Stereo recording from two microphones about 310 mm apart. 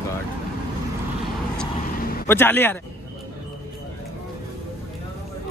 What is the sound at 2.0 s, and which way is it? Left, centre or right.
Vehicle, left.